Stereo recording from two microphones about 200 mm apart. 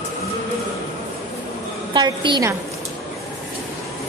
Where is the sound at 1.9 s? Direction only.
20° right (ahead or behind).